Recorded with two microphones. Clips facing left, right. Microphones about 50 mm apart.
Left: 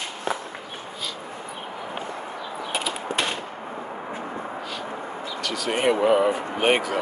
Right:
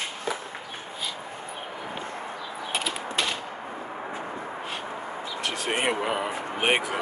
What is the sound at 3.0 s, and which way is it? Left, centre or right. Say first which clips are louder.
Mechanisms: left 2 dB; left.